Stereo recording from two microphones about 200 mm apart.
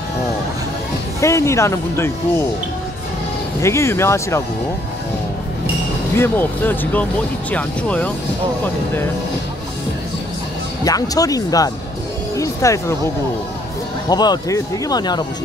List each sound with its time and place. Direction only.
1.2 s speech: 15° left (ahead or behind)
3.6 s speech: 15° left (ahead or behind)
6.1 s speech: 10° left (ahead or behind)
10.8 s speech: 20° left (ahead or behind)
14.0 s speech: 20° left (ahead or behind)